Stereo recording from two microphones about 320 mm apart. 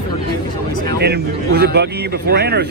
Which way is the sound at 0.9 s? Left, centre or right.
Right.